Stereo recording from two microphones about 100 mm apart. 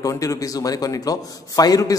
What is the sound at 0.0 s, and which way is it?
Speech, 35° left (ahead or behind).